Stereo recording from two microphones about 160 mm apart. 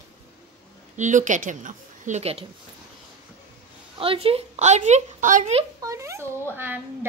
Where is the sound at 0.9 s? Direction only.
50° right (ahead or behind).